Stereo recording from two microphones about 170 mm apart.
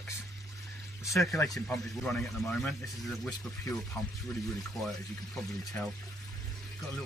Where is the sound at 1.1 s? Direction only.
20° left (ahead or behind).